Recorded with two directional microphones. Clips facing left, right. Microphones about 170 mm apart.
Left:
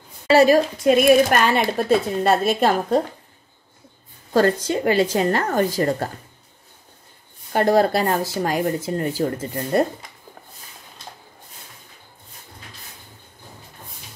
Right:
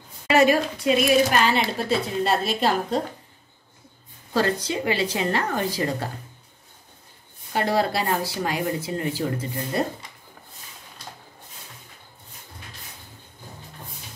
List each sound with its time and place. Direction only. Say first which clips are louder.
0.3 s a woman's voice: left 4 dB; 35° left (ahead or behind)
0.8 s speech: left 5 dB; 55° left (ahead or behind)
4.3 s speech: left 5 dB; 45° left (ahead or behind)
7.5 s speech: left 6 dB; 45° left (ahead or behind)